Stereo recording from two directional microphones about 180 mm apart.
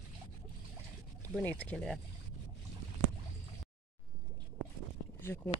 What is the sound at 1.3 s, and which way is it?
Speech, 10° left (ahead or behind).